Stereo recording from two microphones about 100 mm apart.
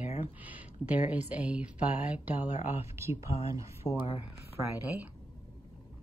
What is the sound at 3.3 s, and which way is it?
Speech, 65° left (ahead or behind).